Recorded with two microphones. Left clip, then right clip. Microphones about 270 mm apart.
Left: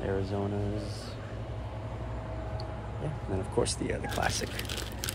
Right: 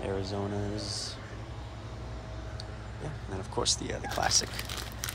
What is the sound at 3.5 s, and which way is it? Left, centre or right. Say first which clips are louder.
Speech: right 1 dB; centre.